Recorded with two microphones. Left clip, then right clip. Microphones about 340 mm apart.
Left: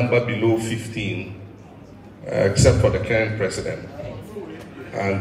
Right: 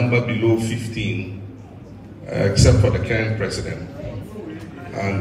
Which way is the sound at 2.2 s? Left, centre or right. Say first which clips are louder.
Left 1 dB; left.